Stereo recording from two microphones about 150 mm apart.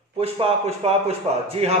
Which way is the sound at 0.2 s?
40° right (ahead or behind).